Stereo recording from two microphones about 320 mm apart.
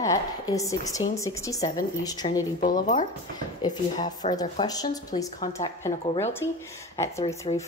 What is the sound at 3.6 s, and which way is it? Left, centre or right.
A woman's voice, centre.